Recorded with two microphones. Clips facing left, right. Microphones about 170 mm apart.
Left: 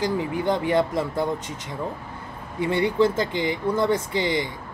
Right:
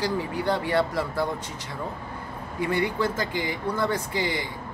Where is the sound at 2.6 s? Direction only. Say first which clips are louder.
Left 5 dB; 25° left (ahead or behind).